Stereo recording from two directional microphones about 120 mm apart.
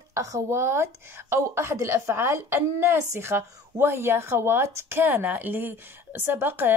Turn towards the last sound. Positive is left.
turn(degrees=-15)  # may be behind; listen again after turning